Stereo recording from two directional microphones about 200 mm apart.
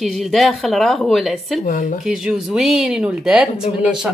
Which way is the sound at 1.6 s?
40° left (ahead or behind).